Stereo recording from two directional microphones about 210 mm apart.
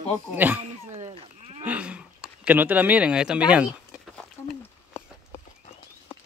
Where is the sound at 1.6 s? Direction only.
5° right (ahead or behind).